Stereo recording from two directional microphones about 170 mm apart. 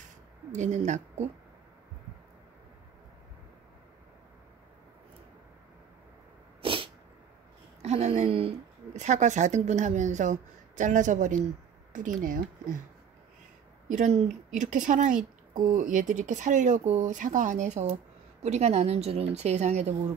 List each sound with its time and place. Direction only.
0.5 s speech: 45° right (ahead or behind)
6.6 s sneeze: 30° right (ahead or behind)
7.8 s speech: 40° right (ahead or behind)
13.8 s a woman's voice: 45° right (ahead or behind)